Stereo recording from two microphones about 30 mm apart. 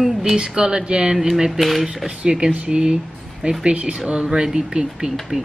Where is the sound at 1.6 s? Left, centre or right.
Centre.